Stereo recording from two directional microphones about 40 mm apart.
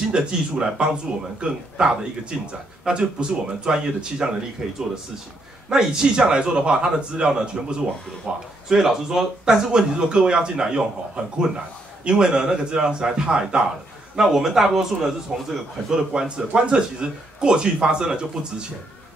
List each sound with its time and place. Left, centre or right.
0.1 s a man's voice: right
2.3 s speech: centre
2.9 s a man's voice: right
5.7 s a man's voice: centre
9.7 s a man's voice: right
14.2 s a man's voice: centre